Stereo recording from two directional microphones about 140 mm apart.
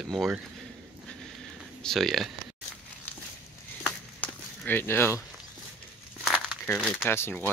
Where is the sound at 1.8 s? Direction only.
5° left (ahead or behind).